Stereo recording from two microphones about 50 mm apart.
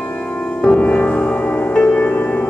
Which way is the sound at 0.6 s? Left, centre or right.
Left.